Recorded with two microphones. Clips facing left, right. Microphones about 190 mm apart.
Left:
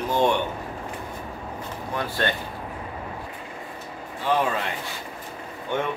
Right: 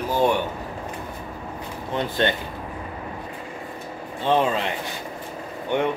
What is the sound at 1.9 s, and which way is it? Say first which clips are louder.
Speech: right 4 dB; 20° right (ahead or behind).